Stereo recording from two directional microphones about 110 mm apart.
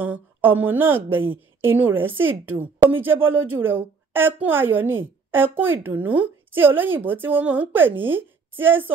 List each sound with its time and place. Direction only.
0.0 s a woman's voice: 15° right (ahead or behind)